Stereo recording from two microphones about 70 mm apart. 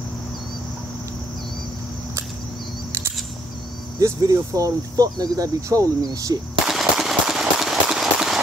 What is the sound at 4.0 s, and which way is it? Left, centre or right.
Speech, right.